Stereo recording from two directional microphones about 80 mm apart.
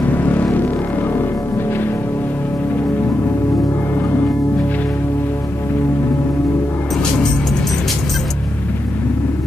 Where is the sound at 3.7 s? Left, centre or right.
Left.